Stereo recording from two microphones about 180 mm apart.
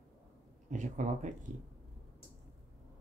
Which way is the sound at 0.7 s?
45° right (ahead or behind).